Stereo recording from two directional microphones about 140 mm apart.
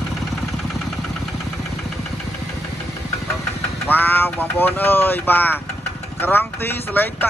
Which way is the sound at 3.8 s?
15° left (ahead or behind).